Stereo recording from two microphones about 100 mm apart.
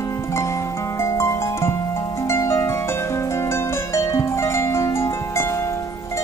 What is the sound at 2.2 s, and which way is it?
Harp, 30° left (ahead or behind).